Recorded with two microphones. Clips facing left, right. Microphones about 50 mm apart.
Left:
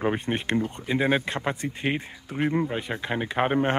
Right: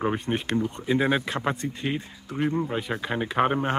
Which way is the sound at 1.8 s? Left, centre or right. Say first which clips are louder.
Left 2 dB; left.